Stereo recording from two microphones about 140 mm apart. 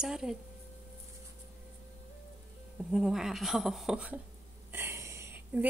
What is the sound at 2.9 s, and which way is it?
Speech, 5° right (ahead or behind).